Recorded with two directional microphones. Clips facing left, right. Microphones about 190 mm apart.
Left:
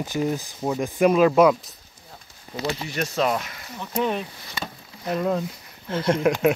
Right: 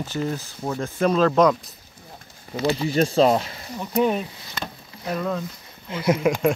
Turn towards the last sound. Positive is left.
turn(degrees=0)  # may be behind; listen again after turning